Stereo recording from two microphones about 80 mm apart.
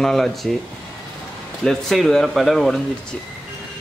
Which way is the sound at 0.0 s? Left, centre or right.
Centre.